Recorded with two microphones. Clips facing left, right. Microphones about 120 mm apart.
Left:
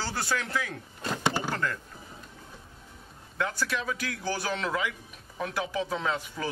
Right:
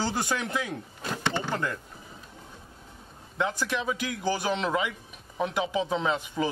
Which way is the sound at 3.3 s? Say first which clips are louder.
Right 2 dB; 20° right (ahead or behind).